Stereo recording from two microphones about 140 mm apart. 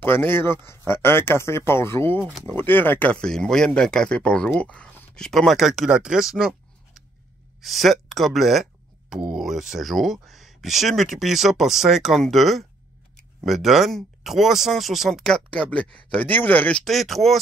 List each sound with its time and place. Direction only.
0.0 s speech: 15° left (ahead or behind)
2.1 s speech: 10° right (ahead or behind)
2.4 s speech: 15° left (ahead or behind)